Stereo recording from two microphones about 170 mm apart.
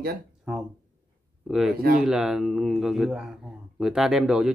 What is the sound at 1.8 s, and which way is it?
Speech, 60° right (ahead or behind).